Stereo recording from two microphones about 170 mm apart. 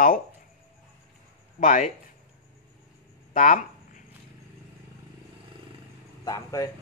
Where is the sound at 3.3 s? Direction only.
50° left (ahead or behind).